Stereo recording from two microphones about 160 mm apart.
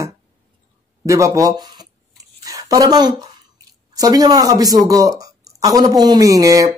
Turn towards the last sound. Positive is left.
turn(degrees=-20)  # may be behind; listen again after turning